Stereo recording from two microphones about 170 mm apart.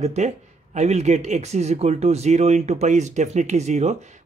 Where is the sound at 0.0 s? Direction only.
40° right (ahead or behind).